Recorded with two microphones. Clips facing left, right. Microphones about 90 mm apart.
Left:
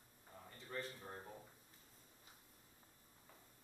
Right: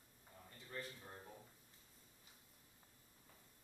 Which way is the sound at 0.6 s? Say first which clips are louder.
Left 3 dB; 35° left (ahead or behind).